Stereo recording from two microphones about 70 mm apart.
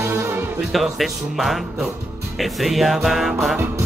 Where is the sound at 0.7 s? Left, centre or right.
Centre.